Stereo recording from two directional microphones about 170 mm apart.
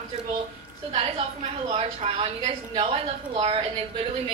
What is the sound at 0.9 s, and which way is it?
A woman's voice, 35° right (ahead or behind).